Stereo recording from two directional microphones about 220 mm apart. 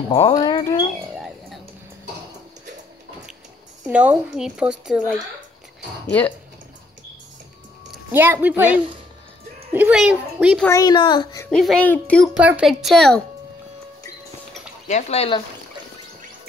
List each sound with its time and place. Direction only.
0.1 s speech: 20° left (ahead or behind)
1.1 s a sound: centre (ahead or behind)
3.9 s speech: 5° right (ahead or behind)
8.1 s a woman's voice: 10° right (ahead or behind)
10.6 s speech: 15° left (ahead or behind)
11.4 s speech: 5° left (ahead or behind)
12.4 s speech: 5° right (ahead or behind)
14.9 s speech: 30° left (ahead or behind)